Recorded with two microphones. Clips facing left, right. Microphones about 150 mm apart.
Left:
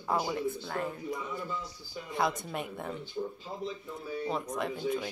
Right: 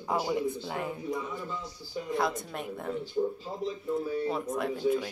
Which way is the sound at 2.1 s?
Centre (ahead or behind).